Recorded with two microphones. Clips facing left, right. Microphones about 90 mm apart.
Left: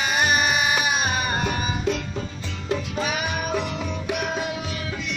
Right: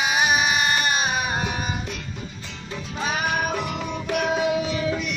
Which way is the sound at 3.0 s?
35° right (ahead or behind).